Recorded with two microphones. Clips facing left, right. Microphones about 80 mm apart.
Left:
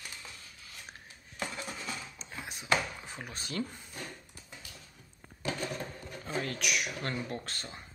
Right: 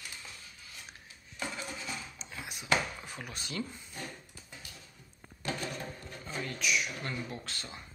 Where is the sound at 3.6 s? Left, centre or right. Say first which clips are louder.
Left 2 dB; left.